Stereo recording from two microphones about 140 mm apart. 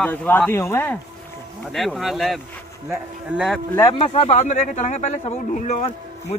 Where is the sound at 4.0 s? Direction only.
45° left (ahead or behind).